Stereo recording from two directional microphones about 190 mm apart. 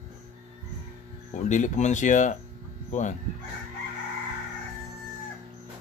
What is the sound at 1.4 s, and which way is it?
Speech, 40° left (ahead or behind).